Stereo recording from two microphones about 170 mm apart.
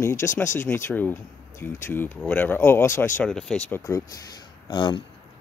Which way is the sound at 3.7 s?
15° left (ahead or behind).